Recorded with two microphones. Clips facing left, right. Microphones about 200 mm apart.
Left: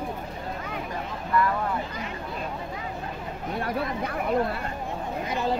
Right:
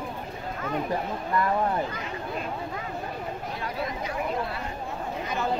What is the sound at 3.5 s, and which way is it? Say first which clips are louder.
Speech: left 6 dB; 55° left (ahead or behind).